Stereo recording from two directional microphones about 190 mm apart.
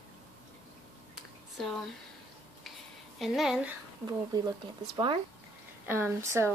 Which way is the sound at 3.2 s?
Centre (ahead or behind).